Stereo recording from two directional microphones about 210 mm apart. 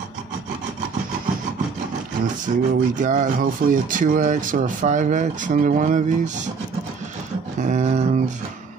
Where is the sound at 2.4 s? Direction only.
40° right (ahead or behind).